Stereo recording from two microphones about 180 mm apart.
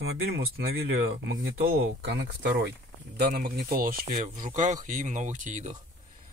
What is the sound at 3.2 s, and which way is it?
Speech, 55° right (ahead or behind).